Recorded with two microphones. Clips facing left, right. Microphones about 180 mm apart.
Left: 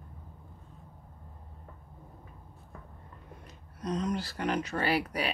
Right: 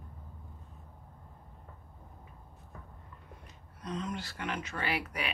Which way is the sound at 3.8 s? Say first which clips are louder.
Left 6 dB; 40° left (ahead or behind).